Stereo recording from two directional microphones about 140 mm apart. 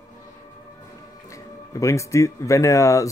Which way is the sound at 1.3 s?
20° left (ahead or behind).